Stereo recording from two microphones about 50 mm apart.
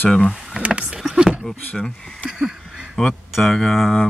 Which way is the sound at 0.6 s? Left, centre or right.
Right.